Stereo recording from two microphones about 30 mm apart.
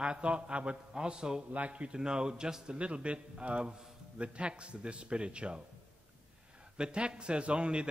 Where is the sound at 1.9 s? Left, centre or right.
Right.